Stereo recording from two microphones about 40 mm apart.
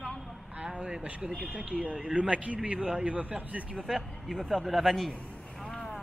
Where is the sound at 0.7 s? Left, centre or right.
Right.